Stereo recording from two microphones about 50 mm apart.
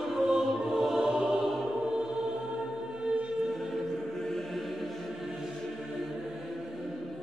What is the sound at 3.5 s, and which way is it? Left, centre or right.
Choir, centre.